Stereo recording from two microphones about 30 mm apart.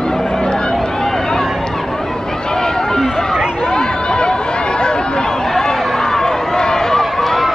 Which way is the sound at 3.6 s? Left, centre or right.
Left.